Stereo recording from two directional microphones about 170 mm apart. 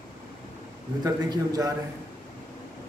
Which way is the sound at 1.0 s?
20° right (ahead or behind).